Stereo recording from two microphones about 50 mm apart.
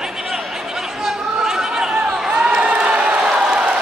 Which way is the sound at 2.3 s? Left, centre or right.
Centre.